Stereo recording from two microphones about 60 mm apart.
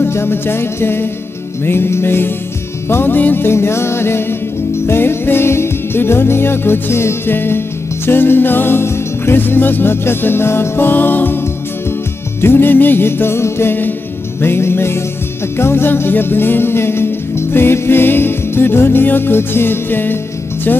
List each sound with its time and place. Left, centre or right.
0.0 s music: left